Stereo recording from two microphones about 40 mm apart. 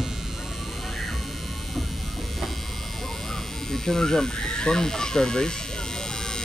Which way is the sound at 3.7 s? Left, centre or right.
Centre.